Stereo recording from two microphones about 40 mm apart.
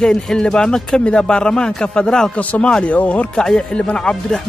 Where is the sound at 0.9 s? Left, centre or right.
Left.